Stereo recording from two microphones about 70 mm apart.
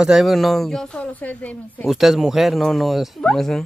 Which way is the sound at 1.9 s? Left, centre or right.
Centre.